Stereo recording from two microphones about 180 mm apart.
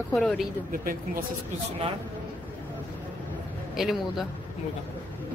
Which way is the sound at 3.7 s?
Centre (ahead or behind).